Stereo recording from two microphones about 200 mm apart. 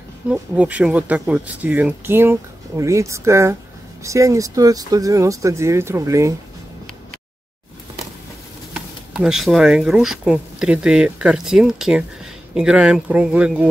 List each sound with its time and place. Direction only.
0.3 s speech: 5° right (ahead or behind)
8.7 s speech: 5° right (ahead or behind)